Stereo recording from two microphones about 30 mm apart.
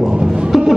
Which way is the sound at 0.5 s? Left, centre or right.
Centre.